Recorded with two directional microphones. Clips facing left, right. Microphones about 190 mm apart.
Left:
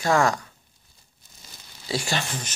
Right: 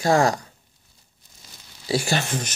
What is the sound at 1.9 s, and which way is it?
Speech, 35° right (ahead or behind).